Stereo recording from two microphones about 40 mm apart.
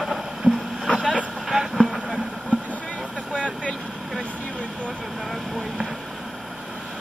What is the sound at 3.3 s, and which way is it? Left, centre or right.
Vehicle, left.